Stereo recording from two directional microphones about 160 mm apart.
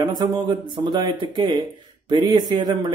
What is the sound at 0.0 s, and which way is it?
Speech, 30° right (ahead or behind).